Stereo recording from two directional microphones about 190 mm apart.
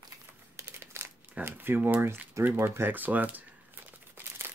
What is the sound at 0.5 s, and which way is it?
Crumpling, 15° right (ahead or behind).